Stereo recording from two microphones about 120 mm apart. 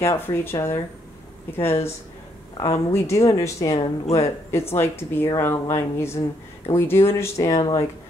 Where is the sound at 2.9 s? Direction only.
25° left (ahead or behind).